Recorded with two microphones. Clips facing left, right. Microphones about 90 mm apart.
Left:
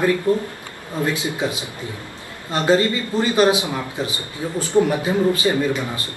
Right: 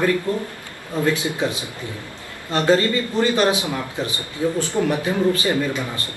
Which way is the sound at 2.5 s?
20° left (ahead or behind).